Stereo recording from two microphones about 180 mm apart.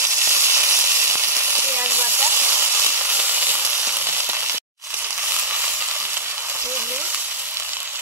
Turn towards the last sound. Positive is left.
turn(degrees=-10)  # may be behind; listen again after turning